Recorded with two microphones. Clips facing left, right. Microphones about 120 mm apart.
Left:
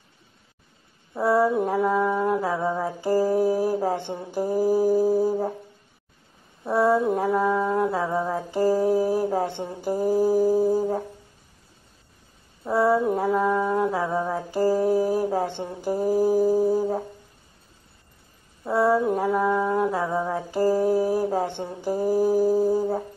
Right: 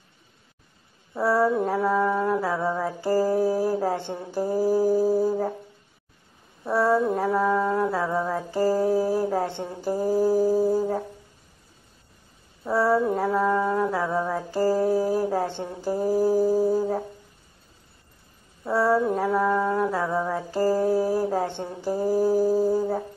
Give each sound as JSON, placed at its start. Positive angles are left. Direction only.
{"t": 1.1, "sound": "mantra", "side_deg": 15}
{"t": 6.6, "sound": "a sound", "side_deg": 0}
{"t": 7.2, "sound": "mantra", "side_deg": 5}
{"t": 7.5, "sound": "a sound", "side_deg": 20}
{"t": 12.7, "sound": "mantra", "side_deg": 15}
{"t": 16.1, "sound": "music", "side_deg": 15}
{"t": 18.7, "sound": "mantra", "side_deg": 15}
{"t": 22.7, "sound": "music", "side_deg": 20}